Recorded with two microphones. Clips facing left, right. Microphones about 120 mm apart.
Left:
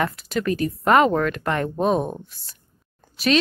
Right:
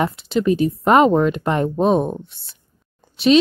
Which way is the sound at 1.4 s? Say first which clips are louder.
Right 4 dB; 20° right (ahead or behind).